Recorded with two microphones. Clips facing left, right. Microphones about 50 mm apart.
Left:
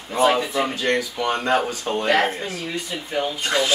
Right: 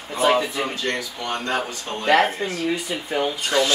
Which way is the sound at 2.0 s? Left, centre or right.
Centre.